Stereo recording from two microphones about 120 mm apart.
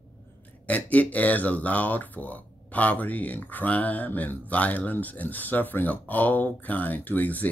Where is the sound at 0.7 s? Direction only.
15° left (ahead or behind).